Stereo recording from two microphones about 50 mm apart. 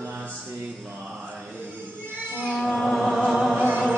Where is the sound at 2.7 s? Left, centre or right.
Centre.